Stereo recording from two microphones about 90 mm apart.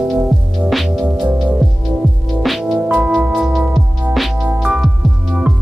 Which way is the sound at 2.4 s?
Centre (ahead or behind).